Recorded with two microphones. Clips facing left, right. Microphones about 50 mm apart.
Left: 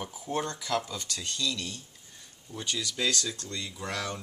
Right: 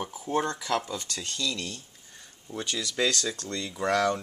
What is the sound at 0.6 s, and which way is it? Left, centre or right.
Speech, right.